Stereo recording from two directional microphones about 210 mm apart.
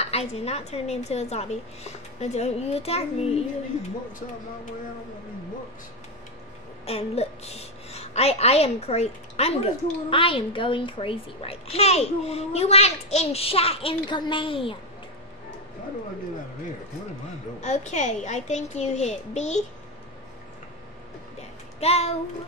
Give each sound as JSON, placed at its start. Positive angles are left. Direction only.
{"t": 0.0, "sound": "speech", "side_deg": 30}
{"t": 6.9, "sound": "a woman's voice", "side_deg": 30}
{"t": 17.6, "sound": "speech", "side_deg": 35}
{"t": 21.4, "sound": "music", "side_deg": 30}